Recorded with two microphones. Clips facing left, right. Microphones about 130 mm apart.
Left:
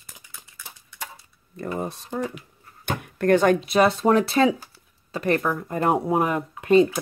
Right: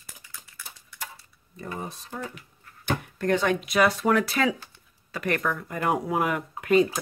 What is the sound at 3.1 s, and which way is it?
Speech, 55° left (ahead or behind).